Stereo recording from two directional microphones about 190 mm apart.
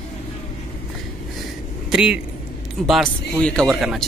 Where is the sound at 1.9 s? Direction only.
5° right (ahead or behind).